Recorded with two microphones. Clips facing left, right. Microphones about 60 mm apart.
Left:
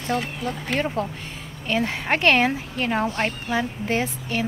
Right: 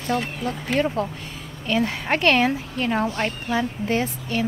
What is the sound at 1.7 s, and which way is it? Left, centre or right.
Speech, left.